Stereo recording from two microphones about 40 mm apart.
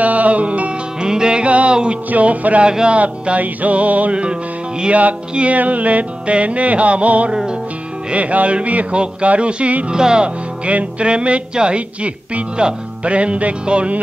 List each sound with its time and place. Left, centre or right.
0.0 s music: right
1.0 s music: centre
1.4 s music: right
4.1 s music: right
9.8 s music: right